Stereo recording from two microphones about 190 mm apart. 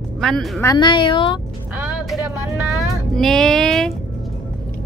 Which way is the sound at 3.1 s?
Centre (ahead or behind).